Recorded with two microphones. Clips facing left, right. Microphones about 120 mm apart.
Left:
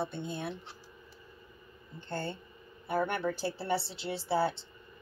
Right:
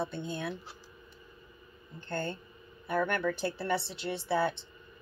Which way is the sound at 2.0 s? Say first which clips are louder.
Right 2 dB; 30° left (ahead or behind).